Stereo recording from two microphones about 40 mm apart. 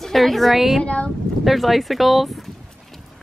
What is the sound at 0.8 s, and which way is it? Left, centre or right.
Speech, left.